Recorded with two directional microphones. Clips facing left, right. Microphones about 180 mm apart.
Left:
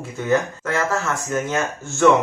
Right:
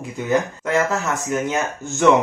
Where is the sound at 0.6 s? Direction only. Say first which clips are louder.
Right 2 dB; 15° right (ahead or behind).